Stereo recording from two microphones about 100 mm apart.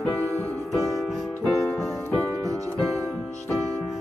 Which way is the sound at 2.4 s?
35° right (ahead or behind).